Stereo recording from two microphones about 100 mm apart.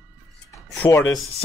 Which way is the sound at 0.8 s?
45° left (ahead or behind).